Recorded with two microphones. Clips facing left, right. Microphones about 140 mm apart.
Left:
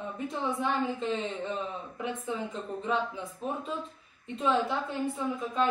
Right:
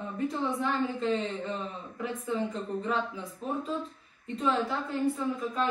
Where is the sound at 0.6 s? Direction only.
20° left (ahead or behind).